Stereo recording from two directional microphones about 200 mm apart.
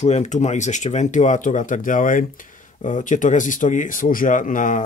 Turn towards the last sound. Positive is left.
turn(degrees=40)  # may be behind; listen again after turning